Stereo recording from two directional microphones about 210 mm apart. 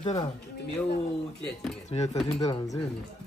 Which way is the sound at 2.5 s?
20° left (ahead or behind).